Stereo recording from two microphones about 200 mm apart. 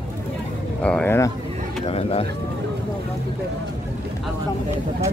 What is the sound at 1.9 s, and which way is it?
Vehicle, 30° left (ahead or behind).